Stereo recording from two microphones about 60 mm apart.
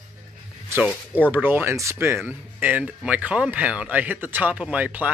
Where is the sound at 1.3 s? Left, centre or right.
Right.